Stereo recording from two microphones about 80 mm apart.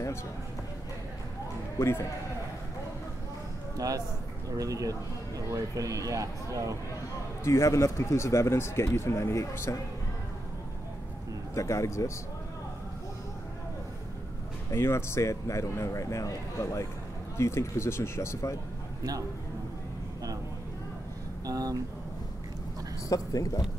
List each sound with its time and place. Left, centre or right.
1.8 s speech: left
3.7 s a man's voice: right
7.4 s speech: left
11.5 s speech: left
14.7 s speech: left
21.5 s a sound: right
23.0 s speech: left